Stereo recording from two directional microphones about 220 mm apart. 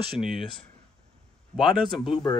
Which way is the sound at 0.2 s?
Centre (ahead or behind).